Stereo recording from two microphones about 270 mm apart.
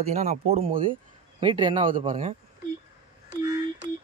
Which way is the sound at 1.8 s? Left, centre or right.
Right.